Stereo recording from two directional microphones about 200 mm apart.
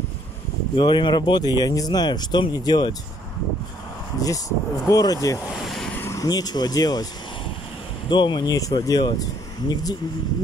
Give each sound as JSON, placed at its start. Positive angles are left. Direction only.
{"t": 0.7, "sound": "speech", "side_deg": 25}
{"t": 4.2, "sound": "speech", "side_deg": 15}
{"t": 5.6, "sound": "vehicle", "side_deg": 0}
{"t": 5.9, "sound": "speech", "side_deg": 15}
{"t": 8.1, "sound": "speech", "side_deg": 20}